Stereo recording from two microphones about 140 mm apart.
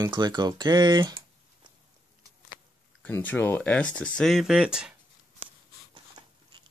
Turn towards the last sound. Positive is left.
turn(degrees=-5)  # may be behind; listen again after turning